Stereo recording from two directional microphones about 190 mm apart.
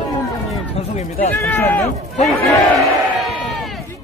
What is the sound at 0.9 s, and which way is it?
Speech, 35° left (ahead or behind).